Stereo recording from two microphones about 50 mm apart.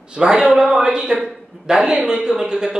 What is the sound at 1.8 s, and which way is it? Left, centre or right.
Speech, right.